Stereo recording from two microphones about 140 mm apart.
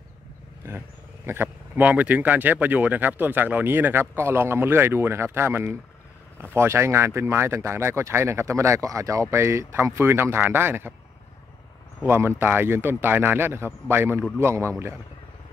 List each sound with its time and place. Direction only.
0.7 s speech: 15° right (ahead or behind)
12.0 s speech: 15° right (ahead or behind)